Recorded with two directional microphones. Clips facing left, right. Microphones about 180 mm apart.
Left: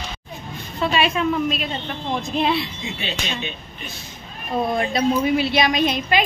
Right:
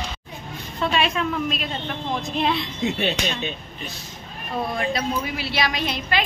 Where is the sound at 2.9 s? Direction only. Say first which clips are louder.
Right 6 dB; 55° right (ahead or behind).